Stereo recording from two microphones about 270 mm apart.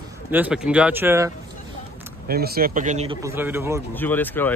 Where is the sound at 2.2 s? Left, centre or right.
Right.